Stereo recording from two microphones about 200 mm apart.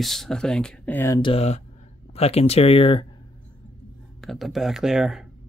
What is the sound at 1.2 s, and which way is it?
Speech, 30° left (ahead or behind).